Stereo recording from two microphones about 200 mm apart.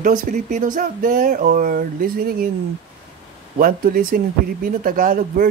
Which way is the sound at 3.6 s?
45° right (ahead or behind).